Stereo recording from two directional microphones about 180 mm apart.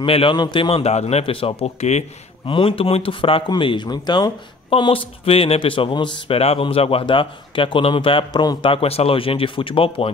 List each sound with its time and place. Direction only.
0.0 s a man's voice: 30° left (ahead or behind)